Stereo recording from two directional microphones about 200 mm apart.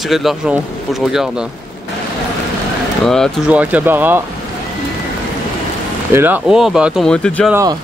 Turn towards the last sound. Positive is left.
turn(degrees=-15)  # may be behind; listen again after turning